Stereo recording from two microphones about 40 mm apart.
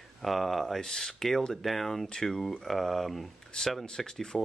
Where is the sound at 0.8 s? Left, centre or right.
Centre.